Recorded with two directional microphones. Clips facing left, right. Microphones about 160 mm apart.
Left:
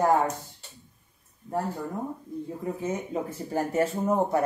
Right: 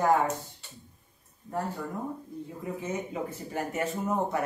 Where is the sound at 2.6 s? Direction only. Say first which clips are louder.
Left 2 dB; 35° left (ahead or behind).